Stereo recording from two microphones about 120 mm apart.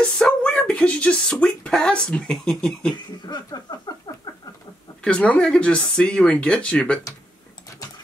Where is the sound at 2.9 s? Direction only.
35° left (ahead or behind).